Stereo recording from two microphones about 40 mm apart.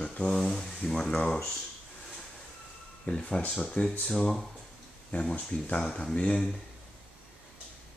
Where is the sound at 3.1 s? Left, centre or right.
Left.